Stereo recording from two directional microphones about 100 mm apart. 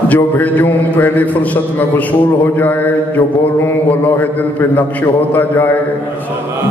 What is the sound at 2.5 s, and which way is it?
Mantra, 20° left (ahead or behind).